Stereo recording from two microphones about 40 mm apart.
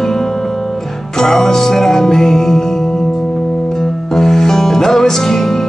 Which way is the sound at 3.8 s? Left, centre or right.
Centre.